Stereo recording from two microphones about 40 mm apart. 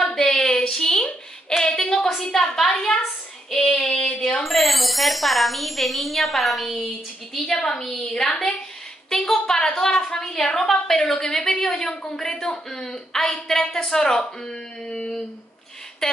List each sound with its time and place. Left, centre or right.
0.0 s a sound: centre
1.6 s a woman's voice: centre
2.5 s a woman's voice: centre
3.9 s speech: left
4.2 s speech: centre
7.3 s a woman's voice: centre
9.2 s a woman's voice: centre
16.0 s a sound: centre